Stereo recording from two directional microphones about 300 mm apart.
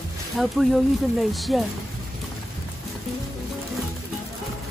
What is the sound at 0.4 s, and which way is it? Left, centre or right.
Speech, centre.